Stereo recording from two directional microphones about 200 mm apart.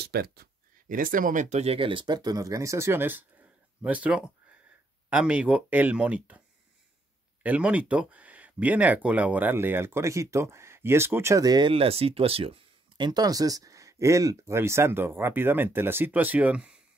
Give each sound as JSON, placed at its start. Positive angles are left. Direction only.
{"t": 0.0, "sound": "speech", "side_deg": -50}
{"t": 7.4, "sound": "speech", "side_deg": -5}